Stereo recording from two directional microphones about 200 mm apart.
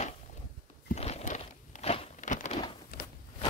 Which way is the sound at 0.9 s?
35° left (ahead or behind).